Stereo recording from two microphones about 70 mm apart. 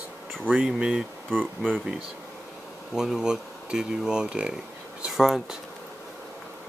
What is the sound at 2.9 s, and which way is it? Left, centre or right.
Speech, centre.